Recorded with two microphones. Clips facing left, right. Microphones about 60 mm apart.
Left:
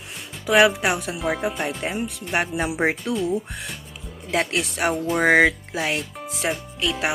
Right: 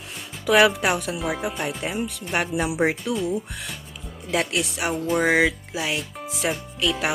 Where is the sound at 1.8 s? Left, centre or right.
Left.